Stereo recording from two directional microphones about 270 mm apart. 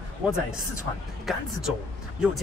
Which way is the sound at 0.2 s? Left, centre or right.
Centre.